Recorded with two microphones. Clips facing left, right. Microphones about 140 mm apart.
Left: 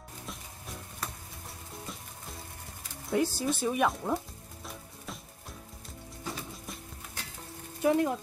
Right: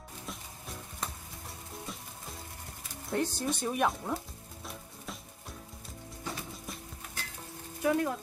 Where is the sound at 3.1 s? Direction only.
5° left (ahead or behind).